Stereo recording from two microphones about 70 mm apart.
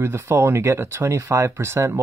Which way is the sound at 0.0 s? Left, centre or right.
Right.